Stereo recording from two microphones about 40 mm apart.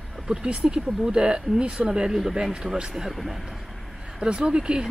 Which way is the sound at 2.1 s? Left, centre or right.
Centre.